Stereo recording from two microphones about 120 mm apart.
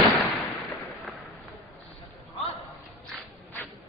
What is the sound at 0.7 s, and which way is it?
Fireworks, centre (ahead or behind).